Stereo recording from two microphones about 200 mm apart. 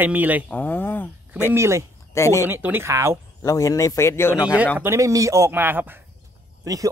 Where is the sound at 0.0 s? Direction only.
10° right (ahead or behind).